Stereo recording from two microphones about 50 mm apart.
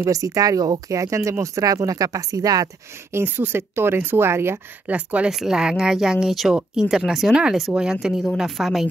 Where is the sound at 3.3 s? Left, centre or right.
Right.